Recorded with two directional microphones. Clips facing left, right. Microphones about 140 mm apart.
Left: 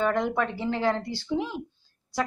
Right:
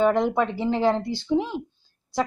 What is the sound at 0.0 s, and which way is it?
Speech, 20° right (ahead or behind).